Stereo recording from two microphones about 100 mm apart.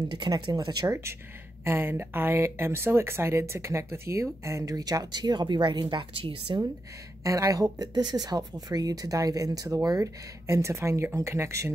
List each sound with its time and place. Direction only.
0.1 s speech: 45° right (ahead or behind)
0.8 s speech: 30° right (ahead or behind); by 6.6 s 60° right (ahead or behind)
7.2 s speech: 35° right (ahead or behind)